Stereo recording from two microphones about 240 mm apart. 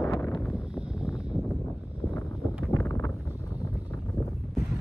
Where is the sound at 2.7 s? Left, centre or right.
Centre.